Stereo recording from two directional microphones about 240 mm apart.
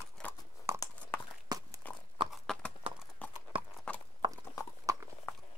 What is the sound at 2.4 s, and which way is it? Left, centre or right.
Clip-clop, centre.